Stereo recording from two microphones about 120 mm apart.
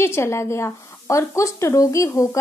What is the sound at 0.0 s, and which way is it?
Speech, 20° left (ahead or behind).